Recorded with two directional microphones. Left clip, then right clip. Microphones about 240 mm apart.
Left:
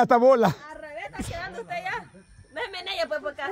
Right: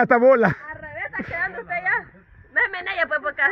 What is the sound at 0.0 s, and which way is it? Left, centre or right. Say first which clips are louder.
Speech: right 3 dB; centre.